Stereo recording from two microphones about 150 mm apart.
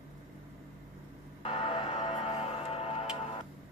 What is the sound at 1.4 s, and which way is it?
Music, 40° left (ahead or behind).